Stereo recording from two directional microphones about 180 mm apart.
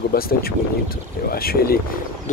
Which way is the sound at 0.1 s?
55° left (ahead or behind).